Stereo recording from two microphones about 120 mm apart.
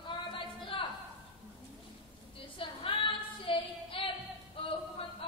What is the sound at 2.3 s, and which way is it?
Female singing, 45° left (ahead or behind).